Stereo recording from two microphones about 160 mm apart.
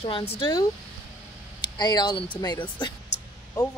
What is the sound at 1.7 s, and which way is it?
Speech, 25° left (ahead or behind).